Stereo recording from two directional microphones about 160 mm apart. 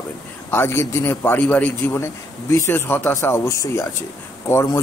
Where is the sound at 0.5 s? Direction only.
15° left (ahead or behind).